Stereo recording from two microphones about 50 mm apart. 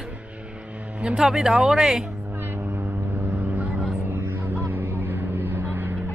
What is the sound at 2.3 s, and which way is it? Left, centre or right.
Vehicle, right.